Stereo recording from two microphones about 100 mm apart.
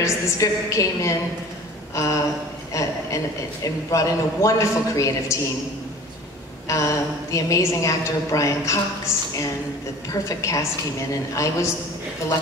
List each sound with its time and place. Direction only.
0.0 s a woman's voice: 30° left (ahead or behind)
6.7 s a woman's voice: 30° left (ahead or behind)